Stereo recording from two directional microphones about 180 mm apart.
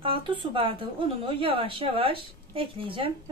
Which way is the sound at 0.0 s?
30° right (ahead or behind).